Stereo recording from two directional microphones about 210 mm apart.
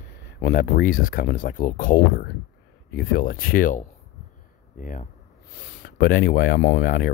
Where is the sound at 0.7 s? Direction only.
40° left (ahead or behind).